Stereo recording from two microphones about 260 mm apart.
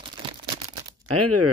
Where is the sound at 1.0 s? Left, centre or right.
Right.